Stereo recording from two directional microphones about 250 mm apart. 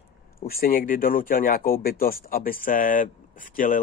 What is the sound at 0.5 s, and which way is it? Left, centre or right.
Speech, left.